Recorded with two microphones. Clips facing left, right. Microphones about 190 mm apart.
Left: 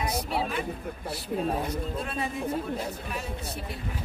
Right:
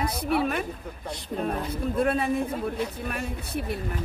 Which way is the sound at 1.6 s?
55° right (ahead or behind).